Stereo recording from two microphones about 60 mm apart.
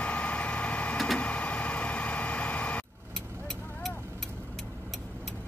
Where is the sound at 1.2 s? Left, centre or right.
Left.